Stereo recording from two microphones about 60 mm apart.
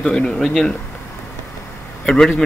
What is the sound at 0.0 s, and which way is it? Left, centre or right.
Speech, centre.